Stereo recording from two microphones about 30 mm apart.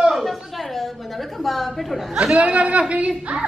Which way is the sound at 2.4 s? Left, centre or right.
Right.